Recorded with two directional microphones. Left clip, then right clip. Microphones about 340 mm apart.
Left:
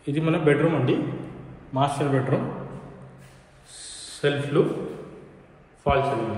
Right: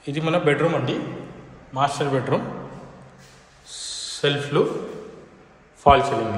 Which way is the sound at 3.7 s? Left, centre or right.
Centre.